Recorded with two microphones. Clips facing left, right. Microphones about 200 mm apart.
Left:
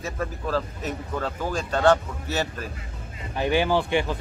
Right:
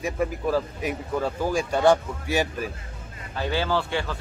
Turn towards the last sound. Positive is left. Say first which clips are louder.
# left 3 dB
turn(degrees=15)  # may be behind; listen again after turning